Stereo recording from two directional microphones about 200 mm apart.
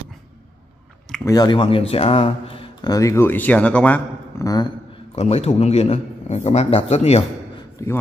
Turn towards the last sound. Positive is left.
turn(degrees=15)  # may be behind; listen again after turning